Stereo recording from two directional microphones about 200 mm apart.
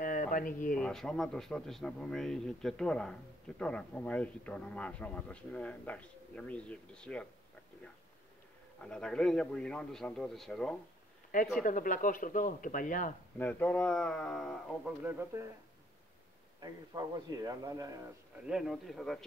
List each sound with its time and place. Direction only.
0.0 s a sound: 45° left (ahead or behind)
0.7 s speech: 5° left (ahead or behind)
8.8 s speech: 5° left (ahead or behind)
11.6 s speech: 40° left (ahead or behind)
13.4 s speech: 10° left (ahead or behind)
15.0 s speech: 10° right (ahead or behind)
16.6 s a man's voice: 20° right (ahead or behind)
18.5 s speech: centre (ahead or behind)